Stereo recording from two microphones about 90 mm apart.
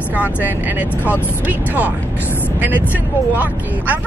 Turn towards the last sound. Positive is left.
turn(degrees=-20)  # may be behind; listen again after turning